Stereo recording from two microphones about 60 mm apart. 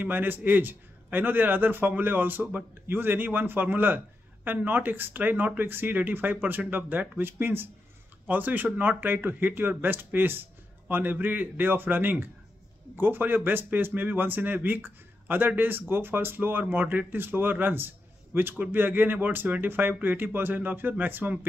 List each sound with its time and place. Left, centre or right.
0.0 s speech: right